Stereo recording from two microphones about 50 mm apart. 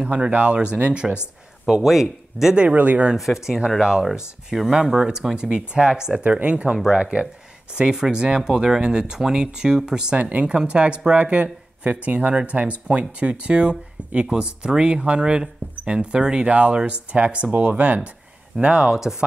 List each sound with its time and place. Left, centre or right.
0.0 s speech: right
1.7 s speech: centre
2.5 s speech: right
3.4 s speech: centre
6.2 s speech: right; by 19.2 s centre